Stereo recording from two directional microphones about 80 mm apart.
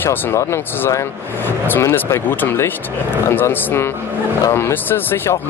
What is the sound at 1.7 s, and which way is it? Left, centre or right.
Speech, left.